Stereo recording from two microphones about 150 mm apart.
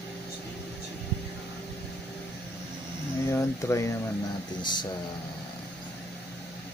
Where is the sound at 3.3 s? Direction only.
20° left (ahead or behind).